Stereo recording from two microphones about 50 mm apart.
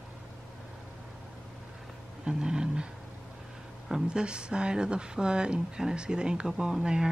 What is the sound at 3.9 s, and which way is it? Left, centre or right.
Speech, centre.